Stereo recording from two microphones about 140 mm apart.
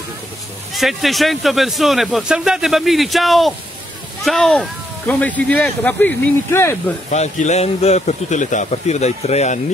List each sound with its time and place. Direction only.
0.7 s a man's voice: centre (ahead or behind); by 6.8 s 15° left (ahead or behind)
7.1 s a man's voice: 55° left (ahead or behind)